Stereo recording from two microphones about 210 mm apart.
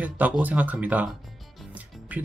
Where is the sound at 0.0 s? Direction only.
5° right (ahead or behind).